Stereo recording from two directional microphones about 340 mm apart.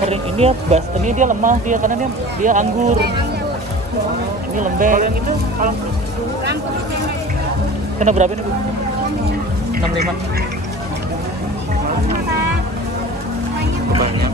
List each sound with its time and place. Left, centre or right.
0.1 s speech: centre
4.6 s speech: right
8.0 s speech: right